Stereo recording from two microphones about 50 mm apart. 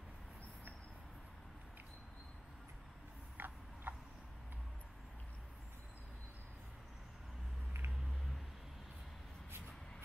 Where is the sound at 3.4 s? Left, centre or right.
Right.